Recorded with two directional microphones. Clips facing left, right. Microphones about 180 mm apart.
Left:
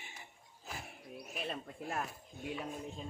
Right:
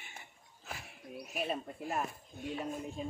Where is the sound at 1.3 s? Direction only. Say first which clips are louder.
Right 5 dB; 5° right (ahead or behind).